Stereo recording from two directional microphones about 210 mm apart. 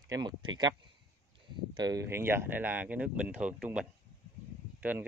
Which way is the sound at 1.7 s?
15° right (ahead or behind).